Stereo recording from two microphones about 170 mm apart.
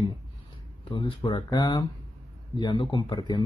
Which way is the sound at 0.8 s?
30° left (ahead or behind).